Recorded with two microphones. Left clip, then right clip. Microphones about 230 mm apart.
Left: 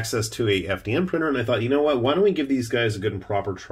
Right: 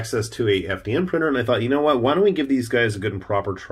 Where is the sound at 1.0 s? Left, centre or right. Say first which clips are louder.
Right 4 dB; centre.